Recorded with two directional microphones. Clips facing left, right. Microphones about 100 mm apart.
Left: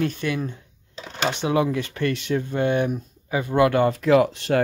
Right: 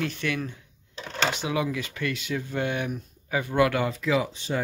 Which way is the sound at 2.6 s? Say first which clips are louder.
Left 7 dB; 40° left (ahead or behind).